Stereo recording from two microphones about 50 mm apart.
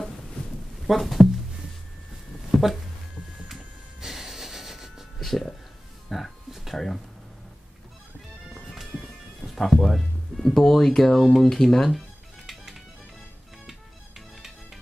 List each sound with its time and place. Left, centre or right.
0.8 s a sound: centre
2.5 s a sound: centre
4.0 s music: centre
5.2 s music: centre
6.1 s a sound: centre
8.6 s bagpipes: centre
9.4 s music: centre
9.8 s speech: centre
12.5 s music: centre
13.7 s music: centre